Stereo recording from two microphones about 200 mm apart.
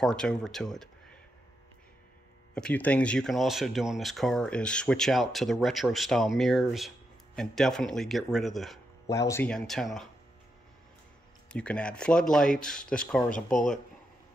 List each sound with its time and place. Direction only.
0.0 s speech: 5° left (ahead or behind)
2.5 s speech: 5° left (ahead or behind)
9.0 s speech: 15° left (ahead or behind)
11.5 s speech: 5° left (ahead or behind)
13.3 s speech: 40° left (ahead or behind)